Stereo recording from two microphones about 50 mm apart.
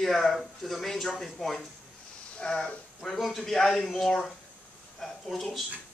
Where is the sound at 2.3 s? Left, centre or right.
Left; by 5.6 s centre.